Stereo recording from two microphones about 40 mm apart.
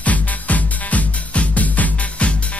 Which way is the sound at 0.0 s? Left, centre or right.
Left.